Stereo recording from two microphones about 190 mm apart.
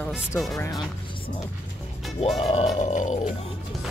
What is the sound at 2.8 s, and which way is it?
Music, 40° left (ahead or behind).